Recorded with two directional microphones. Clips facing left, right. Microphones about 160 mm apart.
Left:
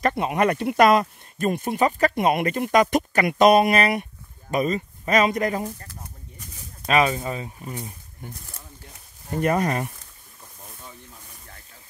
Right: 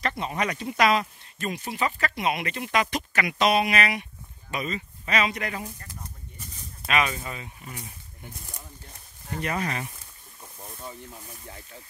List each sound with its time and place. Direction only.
0.0 s speech: 55° left (ahead or behind); by 5.9 s 40° left (ahead or behind)
6.9 s speech: 35° left (ahead or behind)
9.4 s speech: 45° left (ahead or behind)